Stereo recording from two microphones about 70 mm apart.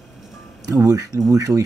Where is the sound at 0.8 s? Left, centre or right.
Right.